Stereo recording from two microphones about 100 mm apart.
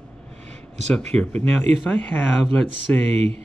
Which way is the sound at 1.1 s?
10° left (ahead or behind).